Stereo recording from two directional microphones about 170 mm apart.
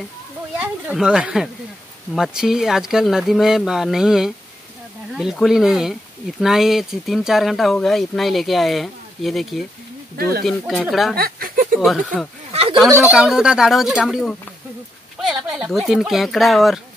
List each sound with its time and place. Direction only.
0.6 s speech: 5° right (ahead or behind)
11.1 s a sound: 60° right (ahead or behind)
11.8 s speech: centre (ahead or behind)